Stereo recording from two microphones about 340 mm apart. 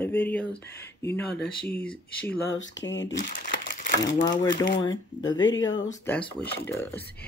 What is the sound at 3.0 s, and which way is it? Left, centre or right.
Crumpling, left.